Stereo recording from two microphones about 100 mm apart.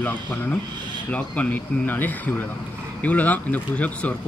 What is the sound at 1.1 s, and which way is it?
Speech, 15° left (ahead or behind).